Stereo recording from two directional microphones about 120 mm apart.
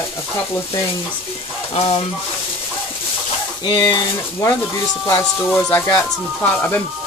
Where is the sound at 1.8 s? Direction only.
50° left (ahead or behind).